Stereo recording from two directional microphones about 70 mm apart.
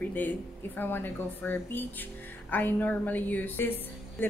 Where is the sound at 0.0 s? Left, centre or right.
Left.